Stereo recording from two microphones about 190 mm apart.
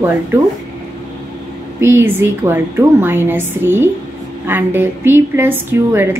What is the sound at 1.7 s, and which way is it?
A woman's voice, 10° right (ahead or behind).